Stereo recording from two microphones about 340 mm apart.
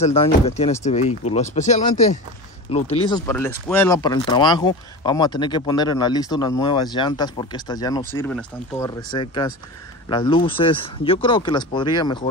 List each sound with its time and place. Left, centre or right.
0.0 s speech: centre